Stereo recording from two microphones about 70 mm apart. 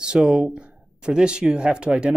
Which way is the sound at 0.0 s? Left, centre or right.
Centre.